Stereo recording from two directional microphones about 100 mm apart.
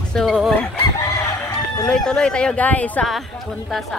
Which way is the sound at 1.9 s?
10° left (ahead or behind).